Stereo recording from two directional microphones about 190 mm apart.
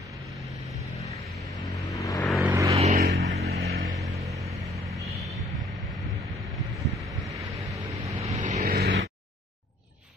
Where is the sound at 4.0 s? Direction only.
Centre (ahead or behind).